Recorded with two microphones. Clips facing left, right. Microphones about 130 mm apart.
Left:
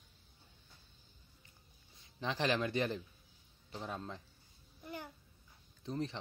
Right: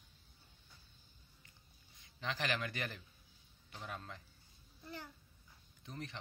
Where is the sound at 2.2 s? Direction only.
25° left (ahead or behind).